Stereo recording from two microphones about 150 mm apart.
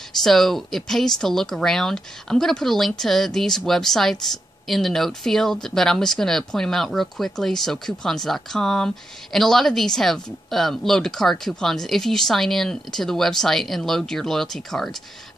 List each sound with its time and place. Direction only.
0.2 s speech: centre (ahead or behind)